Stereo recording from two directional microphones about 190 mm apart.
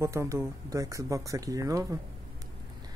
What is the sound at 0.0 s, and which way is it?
Speech, 15° right (ahead or behind).